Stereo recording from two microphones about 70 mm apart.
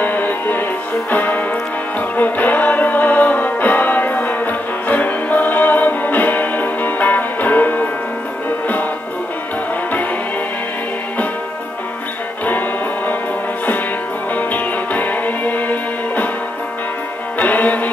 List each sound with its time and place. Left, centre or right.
0.0 s music: left
12.4 s music: left
14.3 s music: left
17.4 s music: left